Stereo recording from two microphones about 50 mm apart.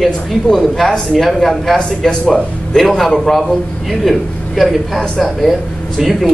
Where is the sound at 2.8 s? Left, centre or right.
Centre.